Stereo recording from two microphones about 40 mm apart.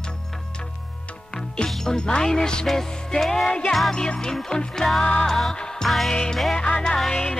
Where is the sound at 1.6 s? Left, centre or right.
Centre.